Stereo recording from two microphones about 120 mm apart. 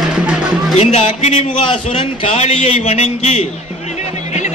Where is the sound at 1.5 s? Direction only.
45° left (ahead or behind).